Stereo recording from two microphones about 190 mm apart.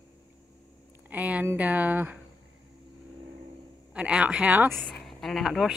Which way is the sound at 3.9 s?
5° right (ahead or behind).